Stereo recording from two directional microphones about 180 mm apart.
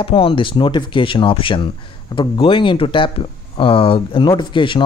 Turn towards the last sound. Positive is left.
turn(degrees=25)  # may be behind; listen again after turning